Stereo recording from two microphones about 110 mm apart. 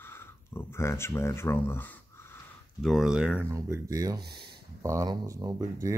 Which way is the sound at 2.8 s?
Centre (ahead or behind).